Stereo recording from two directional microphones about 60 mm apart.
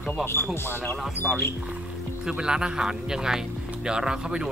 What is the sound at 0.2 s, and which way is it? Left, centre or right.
Speech, left.